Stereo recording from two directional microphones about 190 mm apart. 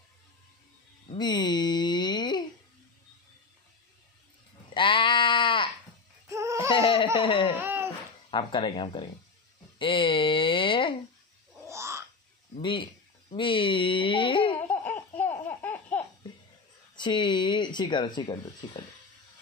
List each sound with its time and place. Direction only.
1.1 s a sound: 20° left (ahead or behind)
4.7 s sheep: 25° left (ahead or behind)
6.2 s music: 15° right (ahead or behind)
6.7 s laughter: 25° left (ahead or behind)
7.2 s speech: 25° left (ahead or behind)
7.6 s a sound: 10° right (ahead or behind)
8.3 s speech: 25° left (ahead or behind)
9.8 s a sound: 25° left (ahead or behind)
11.6 s a sound: 15° right (ahead or behind)
12.5 s a man's voice: 25° left (ahead or behind)
14.7 s laughter: 10° left (ahead or behind)
16.9 s speech: 25° left (ahead or behind)